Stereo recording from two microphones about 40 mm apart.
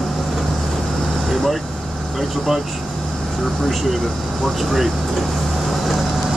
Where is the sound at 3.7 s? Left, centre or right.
Centre.